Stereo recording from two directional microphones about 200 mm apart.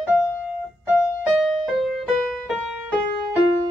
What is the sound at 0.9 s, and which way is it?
Music, centre (ahead or behind).